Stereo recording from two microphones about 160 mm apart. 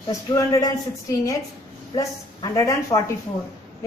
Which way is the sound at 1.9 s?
20° left (ahead or behind).